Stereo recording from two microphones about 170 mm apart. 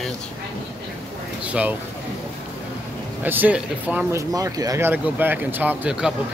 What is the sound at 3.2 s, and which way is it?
Speech, 10° right (ahead or behind).